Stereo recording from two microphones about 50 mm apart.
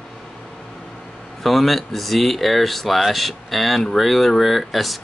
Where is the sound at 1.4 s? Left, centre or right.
Centre.